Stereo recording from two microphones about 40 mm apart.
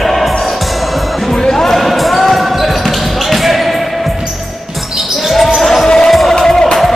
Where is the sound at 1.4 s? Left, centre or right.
Centre.